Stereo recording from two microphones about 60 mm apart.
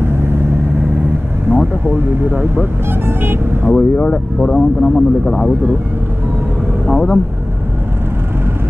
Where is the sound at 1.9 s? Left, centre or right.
Right.